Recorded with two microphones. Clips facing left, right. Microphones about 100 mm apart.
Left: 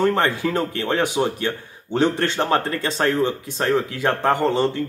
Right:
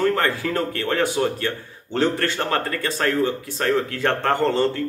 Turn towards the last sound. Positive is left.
turn(degrees=15)  # may be behind; listen again after turning